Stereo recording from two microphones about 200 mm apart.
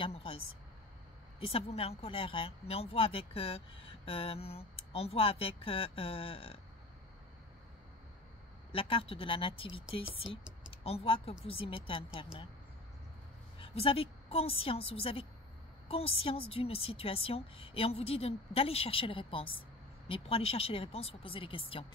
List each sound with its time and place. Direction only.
0.0 s speech: 25° left (ahead or behind)
1.4 s speech: 30° left (ahead or behind)
8.7 s speech: 25° left (ahead or behind)
13.6 s a woman's voice: 30° left (ahead or behind)